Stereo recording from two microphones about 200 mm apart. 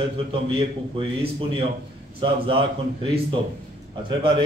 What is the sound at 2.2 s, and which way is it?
Speech, 25° right (ahead or behind).